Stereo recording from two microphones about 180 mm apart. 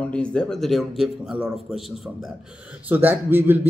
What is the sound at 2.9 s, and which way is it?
Speech, 10° right (ahead or behind).